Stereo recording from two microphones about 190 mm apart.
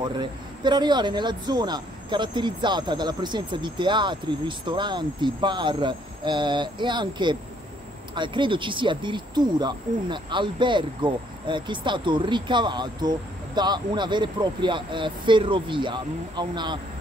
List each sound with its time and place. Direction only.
0.0 s a man's voice: 25° right (ahead or behind)